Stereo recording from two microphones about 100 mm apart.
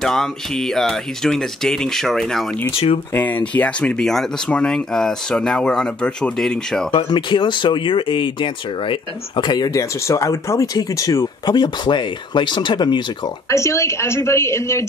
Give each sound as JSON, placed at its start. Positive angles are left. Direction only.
{"t": 0.0, "sound": "speech", "side_deg": 5}
{"t": 3.1, "sound": "speech", "side_deg": 20}
{"t": 6.9, "sound": "speech", "side_deg": 60}
{"t": 9.7, "sound": "speech", "side_deg": 30}
{"t": 11.4, "sound": "speech", "side_deg": 45}
{"t": 13.5, "sound": "a woman's voice", "side_deg": 30}